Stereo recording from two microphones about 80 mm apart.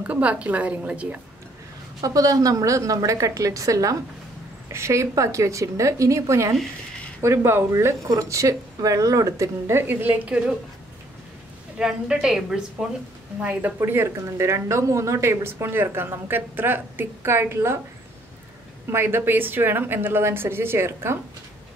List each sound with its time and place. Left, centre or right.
0.0 s a woman's voice: centre
2.0 s a woman's voice: right; by 10.5 s centre
11.8 s a woman's voice: centre
13.7 s speech: right
18.9 s a woman's voice: right